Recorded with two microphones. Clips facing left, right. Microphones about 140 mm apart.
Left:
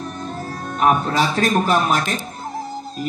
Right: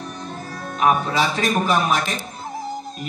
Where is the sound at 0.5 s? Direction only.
45° left (ahead or behind).